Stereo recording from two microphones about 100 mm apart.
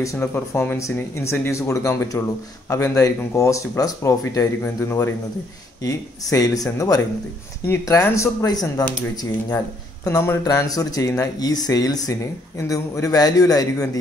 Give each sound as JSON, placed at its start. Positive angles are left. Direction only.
{"t": 0.0, "sound": "speech", "side_deg": 30}
{"t": 6.3, "sound": "speech", "side_deg": 35}
{"t": 10.0, "sound": "speech", "side_deg": 25}
{"t": 10.4, "sound": "speech", "side_deg": 35}